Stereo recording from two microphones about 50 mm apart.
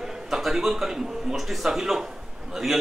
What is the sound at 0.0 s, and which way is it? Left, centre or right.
A man's voice, centre.